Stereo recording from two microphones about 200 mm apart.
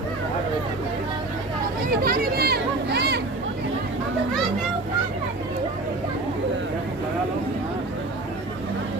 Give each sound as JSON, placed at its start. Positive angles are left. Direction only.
{"t": 2.0, "sound": "children playing", "side_deg": -50}